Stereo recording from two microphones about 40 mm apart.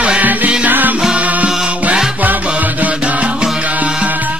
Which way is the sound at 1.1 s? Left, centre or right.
Right.